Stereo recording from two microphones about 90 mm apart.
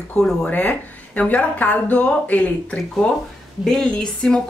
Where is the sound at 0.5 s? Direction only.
20° left (ahead or behind).